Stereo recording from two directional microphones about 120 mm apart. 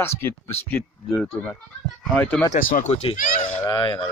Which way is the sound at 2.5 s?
85° left.